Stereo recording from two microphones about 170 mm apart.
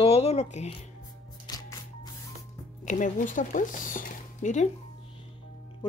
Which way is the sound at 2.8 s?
50° left (ahead or behind).